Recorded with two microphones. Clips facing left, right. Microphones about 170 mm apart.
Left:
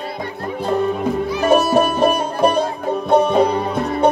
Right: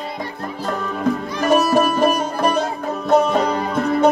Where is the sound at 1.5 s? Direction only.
30° left (ahead or behind).